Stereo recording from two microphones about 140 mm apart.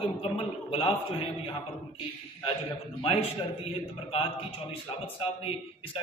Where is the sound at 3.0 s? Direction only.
40° left (ahead or behind).